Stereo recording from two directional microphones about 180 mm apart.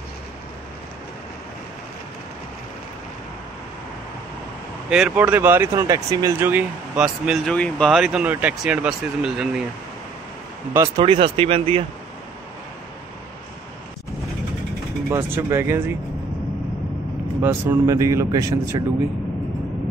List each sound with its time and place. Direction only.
4.8 s speech: 5° right (ahead or behind)
11.0 s speech: 25° right (ahead or behind)
15.0 s speech: 15° right (ahead or behind)
17.4 s speech: 10° right (ahead or behind)